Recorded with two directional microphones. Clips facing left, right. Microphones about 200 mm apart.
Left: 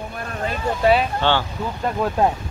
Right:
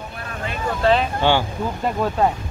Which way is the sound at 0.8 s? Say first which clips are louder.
Left 1 dB; 15° left (ahead or behind).